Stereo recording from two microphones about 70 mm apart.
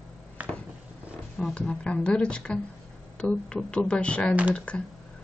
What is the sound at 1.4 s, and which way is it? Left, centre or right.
Speech, centre.